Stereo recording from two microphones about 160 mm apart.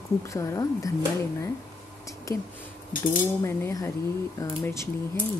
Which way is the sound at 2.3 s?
20° left (ahead or behind).